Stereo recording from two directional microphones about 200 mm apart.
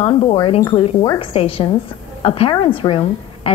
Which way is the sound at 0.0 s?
25° left (ahead or behind).